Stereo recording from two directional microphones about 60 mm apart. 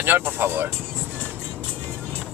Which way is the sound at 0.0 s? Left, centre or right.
Right.